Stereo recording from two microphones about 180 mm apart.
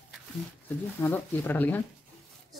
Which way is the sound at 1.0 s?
10° left (ahead or behind).